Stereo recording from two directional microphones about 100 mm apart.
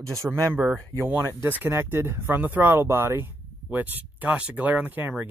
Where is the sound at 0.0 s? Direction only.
35° right (ahead or behind).